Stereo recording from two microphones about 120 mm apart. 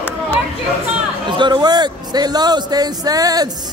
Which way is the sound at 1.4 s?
35° right (ahead or behind).